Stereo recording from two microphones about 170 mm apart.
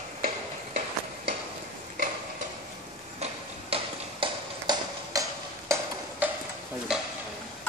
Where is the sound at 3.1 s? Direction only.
35° right (ahead or behind); by 5.7 s 20° right (ahead or behind).